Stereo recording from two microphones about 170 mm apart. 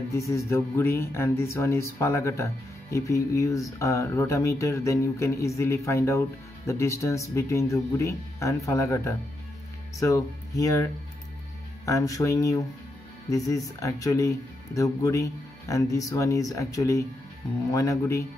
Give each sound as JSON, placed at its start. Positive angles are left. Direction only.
{"t": 0.1, "sound": "speech", "side_deg": 15}